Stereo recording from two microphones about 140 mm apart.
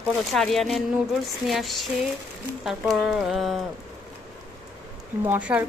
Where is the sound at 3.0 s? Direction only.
5° right (ahead or behind).